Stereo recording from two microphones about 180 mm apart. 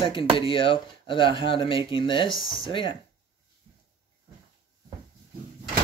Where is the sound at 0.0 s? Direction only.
25° left (ahead or behind).